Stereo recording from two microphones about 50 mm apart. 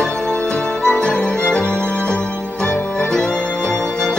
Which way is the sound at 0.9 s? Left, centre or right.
Centre.